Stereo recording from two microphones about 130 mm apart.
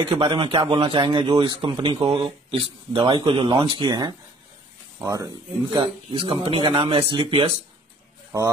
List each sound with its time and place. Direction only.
0.2 s speech: 40° right (ahead or behind)